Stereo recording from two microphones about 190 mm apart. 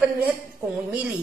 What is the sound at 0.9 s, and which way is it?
Speech, 5° right (ahead or behind).